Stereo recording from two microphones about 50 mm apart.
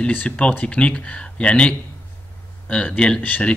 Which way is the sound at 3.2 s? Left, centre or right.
Left.